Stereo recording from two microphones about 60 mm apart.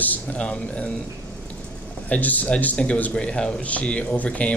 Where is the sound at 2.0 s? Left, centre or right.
Left.